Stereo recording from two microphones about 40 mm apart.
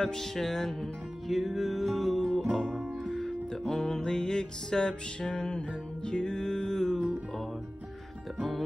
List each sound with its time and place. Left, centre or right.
0.0 s music: centre
2.7 s music: centre
3.2 s music: centre